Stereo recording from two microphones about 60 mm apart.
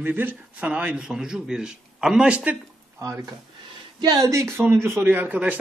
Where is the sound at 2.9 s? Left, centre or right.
Right.